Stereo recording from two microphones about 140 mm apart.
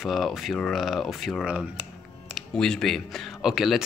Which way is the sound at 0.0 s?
Centre (ahead or behind).